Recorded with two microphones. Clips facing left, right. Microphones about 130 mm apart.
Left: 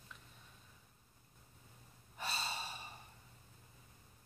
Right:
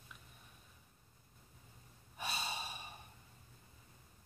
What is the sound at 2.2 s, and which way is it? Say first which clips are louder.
Gasp: even; 15° right (ahead or behind).